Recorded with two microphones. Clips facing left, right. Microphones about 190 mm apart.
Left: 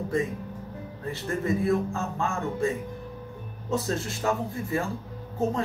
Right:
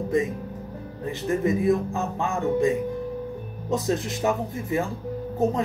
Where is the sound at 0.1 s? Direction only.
20° right (ahead or behind).